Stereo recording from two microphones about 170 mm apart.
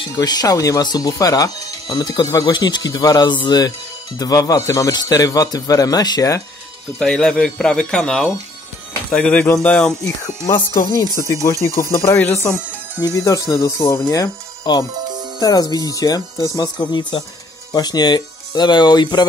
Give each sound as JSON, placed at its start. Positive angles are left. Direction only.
{"t": 0.2, "sound": "speech", "side_deg": 20}
{"t": 7.0, "sound": "speech", "side_deg": 5}
{"t": 10.9, "sound": "speech", "side_deg": 15}
{"t": 15.0, "sound": "music", "side_deg": -25}
{"t": 15.4, "sound": "speech", "side_deg": 20}